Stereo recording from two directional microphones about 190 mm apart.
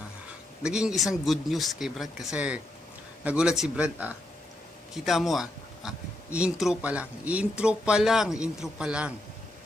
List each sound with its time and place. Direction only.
0.6 s speech: 5° right (ahead or behind)